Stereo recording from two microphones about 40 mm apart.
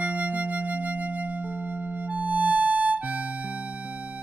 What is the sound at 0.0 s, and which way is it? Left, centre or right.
Music, right.